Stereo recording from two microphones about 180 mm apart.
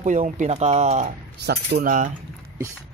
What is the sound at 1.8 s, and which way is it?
Cutlery, 50° right (ahead or behind).